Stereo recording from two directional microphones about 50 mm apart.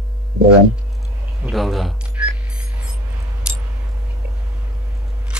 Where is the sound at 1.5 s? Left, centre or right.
Centre.